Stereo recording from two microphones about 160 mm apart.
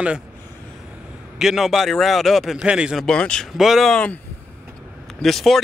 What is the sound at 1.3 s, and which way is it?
Speech, centre (ahead or behind).